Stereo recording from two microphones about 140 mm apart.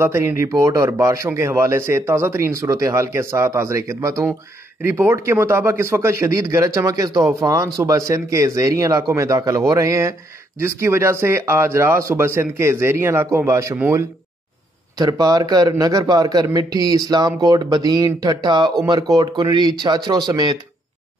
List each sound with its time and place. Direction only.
0.0 s speech: 20° right (ahead or behind)
15.0 s speech: 25° right (ahead or behind)